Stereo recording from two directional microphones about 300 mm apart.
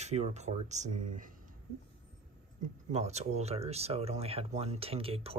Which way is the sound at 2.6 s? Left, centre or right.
Right.